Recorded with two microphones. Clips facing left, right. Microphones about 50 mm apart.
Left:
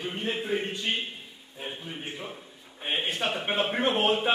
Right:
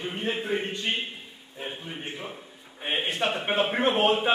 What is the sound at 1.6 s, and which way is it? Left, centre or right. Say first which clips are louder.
A man's voice: right 1 dB; centre.